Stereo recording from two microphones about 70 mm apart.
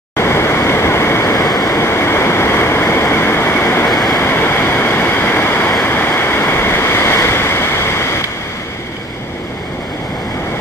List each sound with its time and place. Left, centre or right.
0.2 s waves: left
1.3 s waves: left
1.8 s waves: left
3.9 s waves: centre
4.2 s waves: left